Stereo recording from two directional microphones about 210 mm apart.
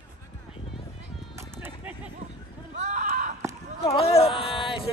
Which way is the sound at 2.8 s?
35° right (ahead or behind).